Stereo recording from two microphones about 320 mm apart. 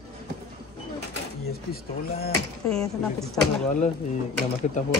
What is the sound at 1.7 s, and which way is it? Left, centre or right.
Speech, left.